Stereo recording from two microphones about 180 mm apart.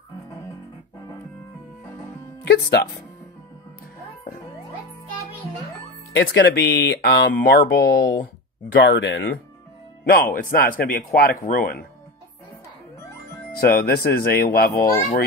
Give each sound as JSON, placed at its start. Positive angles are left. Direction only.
{"t": 2.4, "sound": "speech", "side_deg": 70}
{"t": 6.2, "sound": "speech", "side_deg": 65}
{"t": 7.3, "sound": "speech", "side_deg": 55}
{"t": 8.7, "sound": "speech", "side_deg": 80}
{"t": 10.0, "sound": "a man's voice", "side_deg": 55}
{"t": 13.6, "sound": "speech", "side_deg": 55}